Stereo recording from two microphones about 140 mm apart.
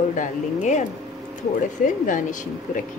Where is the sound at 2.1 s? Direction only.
70° left (ahead or behind).